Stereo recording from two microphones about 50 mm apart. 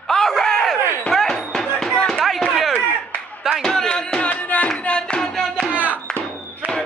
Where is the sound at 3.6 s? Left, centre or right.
Centre.